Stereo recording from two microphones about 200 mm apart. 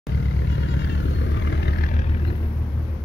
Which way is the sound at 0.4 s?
65° left (ahead or behind).